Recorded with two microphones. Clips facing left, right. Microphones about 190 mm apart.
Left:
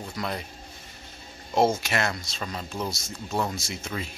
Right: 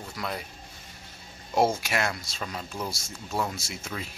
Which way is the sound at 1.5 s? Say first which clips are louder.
Left 2 dB; 10° right (ahead or behind).